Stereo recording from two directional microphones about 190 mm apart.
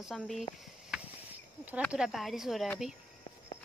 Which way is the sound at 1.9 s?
Centre (ahead or behind).